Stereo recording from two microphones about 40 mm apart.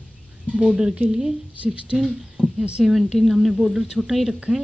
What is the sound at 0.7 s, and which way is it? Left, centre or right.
Speech, centre.